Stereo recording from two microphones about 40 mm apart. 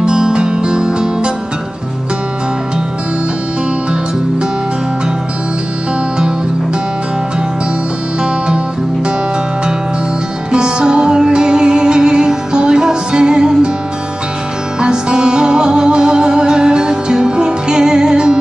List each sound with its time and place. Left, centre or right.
0.0 s music: centre
10.5 s music: right
14.8 s music: right